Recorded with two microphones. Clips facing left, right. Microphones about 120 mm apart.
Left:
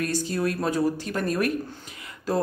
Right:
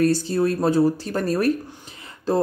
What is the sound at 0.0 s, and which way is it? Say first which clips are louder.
Speech: right 7 dB; 30° right (ahead or behind).